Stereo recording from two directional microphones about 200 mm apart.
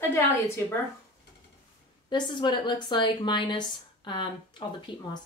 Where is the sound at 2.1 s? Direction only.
25° left (ahead or behind).